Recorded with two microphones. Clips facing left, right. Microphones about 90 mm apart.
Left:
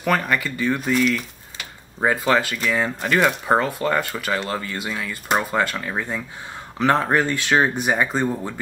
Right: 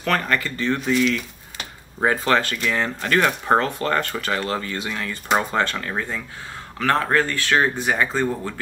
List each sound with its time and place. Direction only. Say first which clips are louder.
0.0 s speech: left 1 dB; 10° left (ahead or behind)